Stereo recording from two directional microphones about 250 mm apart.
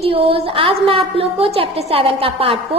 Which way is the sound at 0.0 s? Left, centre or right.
Right.